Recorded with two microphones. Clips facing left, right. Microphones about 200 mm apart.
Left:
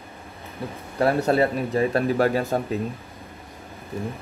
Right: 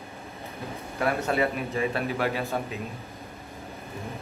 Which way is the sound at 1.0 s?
35° left (ahead or behind).